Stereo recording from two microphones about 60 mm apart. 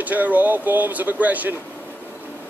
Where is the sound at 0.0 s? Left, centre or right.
Right.